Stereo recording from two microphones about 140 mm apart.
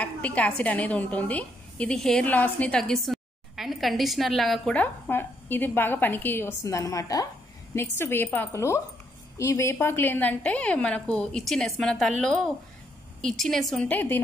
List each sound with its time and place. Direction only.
0.0 s a woman's voice: 10° left (ahead or behind)
13.8 s a woman's voice: 15° left (ahead or behind)